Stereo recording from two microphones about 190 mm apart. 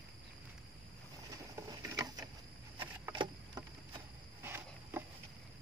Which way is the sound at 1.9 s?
20° right (ahead or behind).